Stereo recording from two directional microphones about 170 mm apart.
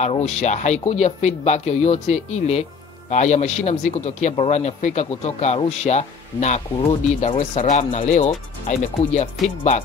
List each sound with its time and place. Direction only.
0.0 s a man's voice: 40° left (ahead or behind)